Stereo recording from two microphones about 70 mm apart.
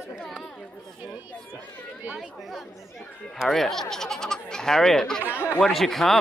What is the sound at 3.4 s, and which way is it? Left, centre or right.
A child's voice, centre.